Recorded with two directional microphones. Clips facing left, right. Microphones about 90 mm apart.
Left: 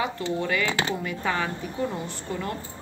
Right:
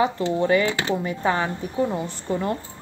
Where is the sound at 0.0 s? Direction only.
30° right (ahead or behind).